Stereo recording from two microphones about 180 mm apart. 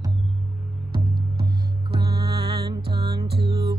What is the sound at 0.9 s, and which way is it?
Music, 55° right (ahead or behind).